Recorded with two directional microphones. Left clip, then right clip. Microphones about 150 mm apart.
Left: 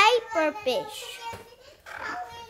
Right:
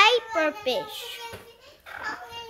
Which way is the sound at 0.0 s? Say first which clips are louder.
Right 1 dB; 5° right (ahead or behind).